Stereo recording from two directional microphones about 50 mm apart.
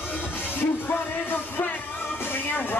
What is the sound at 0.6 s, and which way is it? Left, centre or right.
Music, left.